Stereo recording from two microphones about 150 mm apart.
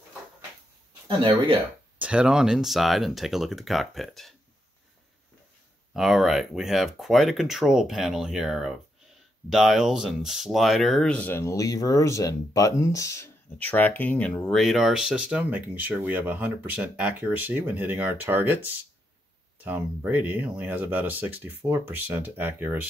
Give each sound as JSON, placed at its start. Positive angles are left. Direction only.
{"t": 1.0, "sound": "speech", "side_deg": -35}
{"t": 2.0, "sound": "speech", "side_deg": -5}
{"t": 5.9, "sound": "speech", "side_deg": 0}